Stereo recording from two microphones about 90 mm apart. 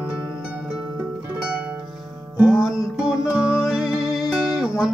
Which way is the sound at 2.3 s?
20° right (ahead or behind).